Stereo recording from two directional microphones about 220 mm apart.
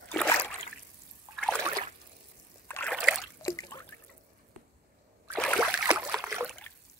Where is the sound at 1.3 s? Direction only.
5° left (ahead or behind).